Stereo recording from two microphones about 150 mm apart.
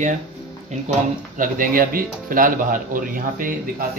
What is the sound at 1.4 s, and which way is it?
Speech, 65° right (ahead or behind).